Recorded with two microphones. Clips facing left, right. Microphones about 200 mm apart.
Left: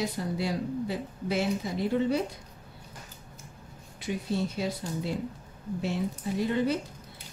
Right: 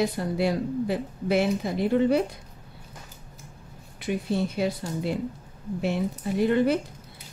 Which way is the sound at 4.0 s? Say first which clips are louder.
Right 4 dB; 60° right (ahead or behind).